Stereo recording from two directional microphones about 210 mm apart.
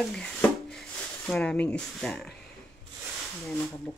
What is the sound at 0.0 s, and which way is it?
Speech, 5° left (ahead or behind).